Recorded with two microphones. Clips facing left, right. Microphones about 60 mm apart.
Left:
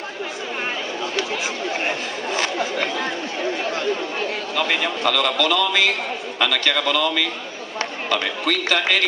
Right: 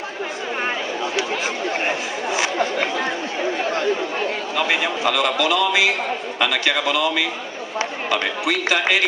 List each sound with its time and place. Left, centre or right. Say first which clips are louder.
1.9 s a man's voice: right 2 dB; centre